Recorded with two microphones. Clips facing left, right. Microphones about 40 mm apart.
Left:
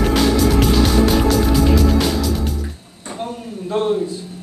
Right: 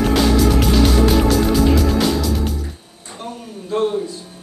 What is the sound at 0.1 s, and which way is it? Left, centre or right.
Music, centre.